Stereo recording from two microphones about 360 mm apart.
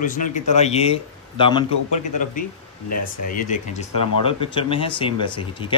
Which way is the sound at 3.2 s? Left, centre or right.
Left.